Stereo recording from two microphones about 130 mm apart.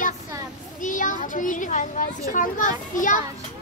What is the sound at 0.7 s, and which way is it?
A child's voice, 85° left.